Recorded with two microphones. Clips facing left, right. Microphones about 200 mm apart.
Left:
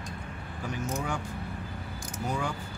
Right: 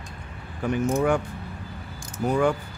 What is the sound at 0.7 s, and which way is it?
Speech, 60° right (ahead or behind).